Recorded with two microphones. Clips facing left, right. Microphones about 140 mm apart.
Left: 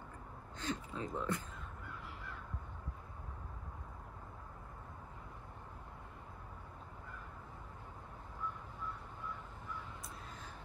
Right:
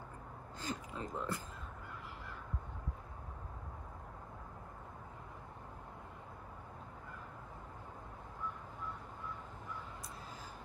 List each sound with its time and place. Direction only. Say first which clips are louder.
0.6 s gasp: left 2 dB; 5° right (ahead or behind)
1.1 s speech: left 2 dB; centre (ahead or behind)